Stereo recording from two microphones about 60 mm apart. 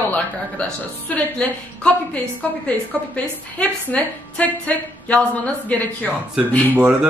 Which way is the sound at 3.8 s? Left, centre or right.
Left.